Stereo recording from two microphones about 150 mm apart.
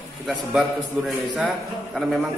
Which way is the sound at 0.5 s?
Centre (ahead or behind).